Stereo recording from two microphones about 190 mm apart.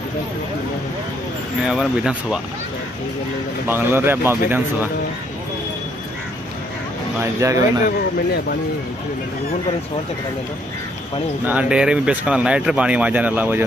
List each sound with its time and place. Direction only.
1.7 s speech: 5° right (ahead or behind)
3.6 s speech: 10° right (ahead or behind)
7.3 s speech: 20° right (ahead or behind)
7.8 s speech: 55° left (ahead or behind)
11.4 s speech: 5° right (ahead or behind)